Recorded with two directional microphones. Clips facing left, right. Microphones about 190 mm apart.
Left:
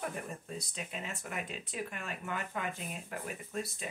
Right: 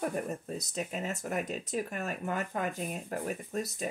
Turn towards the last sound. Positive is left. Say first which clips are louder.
# right 5 dB
turn(degrees=-40)  # may be behind; listen again after turning